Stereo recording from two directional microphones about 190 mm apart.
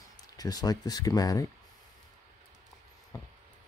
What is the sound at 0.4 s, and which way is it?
Speech, 20° left (ahead or behind).